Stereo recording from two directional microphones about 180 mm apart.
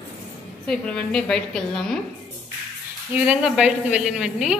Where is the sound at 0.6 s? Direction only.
5° left (ahead or behind).